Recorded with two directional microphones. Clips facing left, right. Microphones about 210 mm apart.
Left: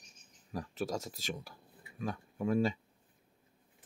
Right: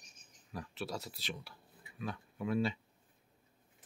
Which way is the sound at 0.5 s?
40° left (ahead or behind).